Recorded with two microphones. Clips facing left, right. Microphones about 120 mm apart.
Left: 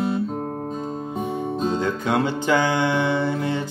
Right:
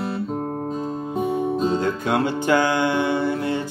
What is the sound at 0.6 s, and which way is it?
Music, 5° right (ahead or behind).